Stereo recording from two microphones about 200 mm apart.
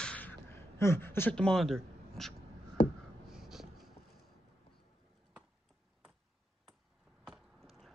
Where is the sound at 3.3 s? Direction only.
Centre (ahead or behind).